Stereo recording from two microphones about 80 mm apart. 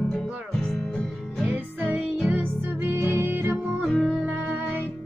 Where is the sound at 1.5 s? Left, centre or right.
Right.